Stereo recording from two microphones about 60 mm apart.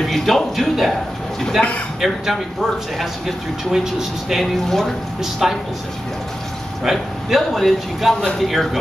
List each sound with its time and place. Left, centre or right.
0.0 s speech: centre
1.6 s a man's voice: centre
2.0 s speech: centre
4.6 s speech: centre
6.8 s speech: centre